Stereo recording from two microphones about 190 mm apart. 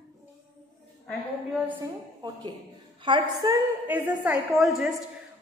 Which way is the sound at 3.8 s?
10° right (ahead or behind).